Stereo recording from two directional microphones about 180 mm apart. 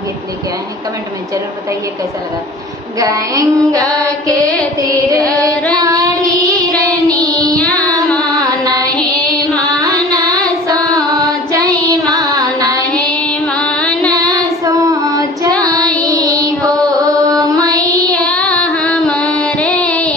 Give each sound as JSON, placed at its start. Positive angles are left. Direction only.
{"t": 3.0, "sound": "child singing", "side_deg": -20}
{"t": 4.3, "sound": "music", "side_deg": 5}
{"t": 5.3, "sound": "child singing", "side_deg": -20}
{"t": 7.5, "sound": "child singing", "side_deg": 5}
{"t": 8.2, "sound": "carnatic music", "side_deg": -20}
{"t": 9.8, "sound": "a sound", "side_deg": -20}
{"t": 11.1, "sound": "music", "side_deg": -20}
{"t": 13.6, "sound": "music", "side_deg": 5}
{"t": 14.2, "sound": "child singing", "side_deg": -20}
{"t": 16.7, "sound": "carnatic music", "side_deg": 5}
{"t": 17.5, "sound": "music", "side_deg": -20}
{"t": 18.2, "sound": "music", "side_deg": 5}